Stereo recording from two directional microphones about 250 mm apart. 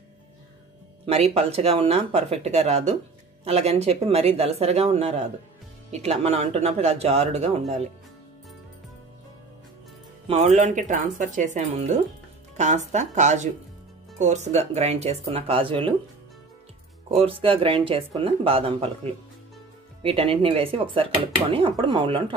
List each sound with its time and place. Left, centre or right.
1.0 s speech: right
10.2 s speech: right
17.2 s speech: right
20.0 s speech: right